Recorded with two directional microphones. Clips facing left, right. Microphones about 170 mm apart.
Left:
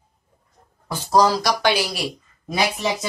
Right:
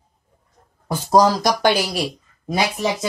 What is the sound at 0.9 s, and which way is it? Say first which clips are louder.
Speech: right 2 dB; 45° right (ahead or behind).